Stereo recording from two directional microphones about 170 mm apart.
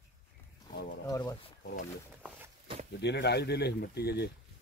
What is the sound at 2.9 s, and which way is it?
Speech, 85° left.